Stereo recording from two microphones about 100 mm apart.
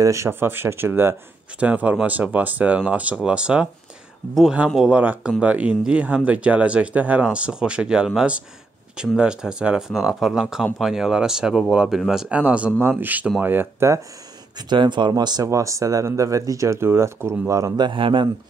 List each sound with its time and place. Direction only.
0.0 s speech: 30° right (ahead or behind); by 3.6 s 10° right (ahead or behind)
4.7 s speech: 10° right (ahead or behind); by 14.0 s 25° right (ahead or behind)
14.7 s speech: 50° right (ahead or behind)
15.4 s speech: 30° right (ahead or behind); by 18.3 s 55° right (ahead or behind)